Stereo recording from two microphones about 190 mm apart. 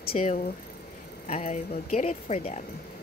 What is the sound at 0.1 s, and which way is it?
Speech, 35° left (ahead or behind).